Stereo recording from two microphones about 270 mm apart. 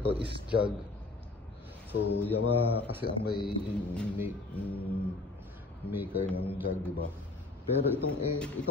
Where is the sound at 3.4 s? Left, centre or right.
Centre.